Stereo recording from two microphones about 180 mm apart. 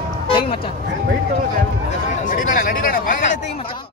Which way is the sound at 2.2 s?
45° left (ahead or behind).